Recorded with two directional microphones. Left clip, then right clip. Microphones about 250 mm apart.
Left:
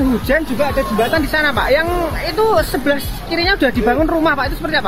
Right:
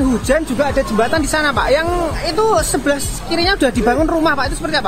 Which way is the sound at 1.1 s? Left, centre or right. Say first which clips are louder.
Even; centre.